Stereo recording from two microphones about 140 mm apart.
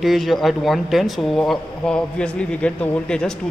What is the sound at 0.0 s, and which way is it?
Speech, centre (ahead or behind).